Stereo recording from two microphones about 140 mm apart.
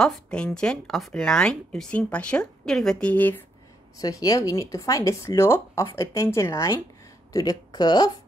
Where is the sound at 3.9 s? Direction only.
25° left (ahead or behind).